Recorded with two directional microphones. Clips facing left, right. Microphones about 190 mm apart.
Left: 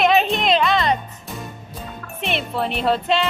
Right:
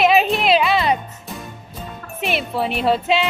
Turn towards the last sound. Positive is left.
turn(degrees=-5)  # may be behind; listen again after turning